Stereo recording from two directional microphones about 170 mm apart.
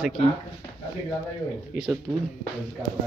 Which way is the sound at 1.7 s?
35° left (ahead or behind).